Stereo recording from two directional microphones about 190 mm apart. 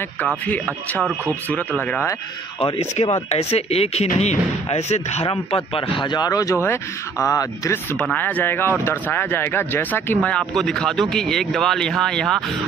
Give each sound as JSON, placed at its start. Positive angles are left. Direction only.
{"t": 0.5, "sound": "speech", "side_deg": 10}
{"t": 2.6, "sound": "speech", "side_deg": 30}